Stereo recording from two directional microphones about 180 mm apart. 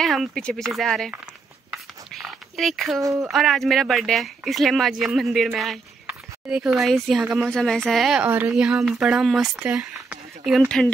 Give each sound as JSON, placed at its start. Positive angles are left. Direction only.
{"t": 0.0, "sound": "speech", "side_deg": 0}
{"t": 2.1, "sound": "a sound", "side_deg": 0}
{"t": 3.0, "sound": "speech", "side_deg": -15}
{"t": 3.3, "sound": "speech", "side_deg": 0}